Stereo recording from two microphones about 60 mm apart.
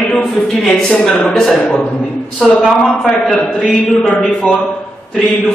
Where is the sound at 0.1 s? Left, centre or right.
Centre.